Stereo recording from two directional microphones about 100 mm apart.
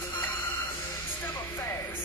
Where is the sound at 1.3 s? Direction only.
25° left (ahead or behind).